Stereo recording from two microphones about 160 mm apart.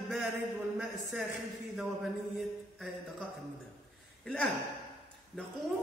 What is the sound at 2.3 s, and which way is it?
Speech, centre (ahead or behind).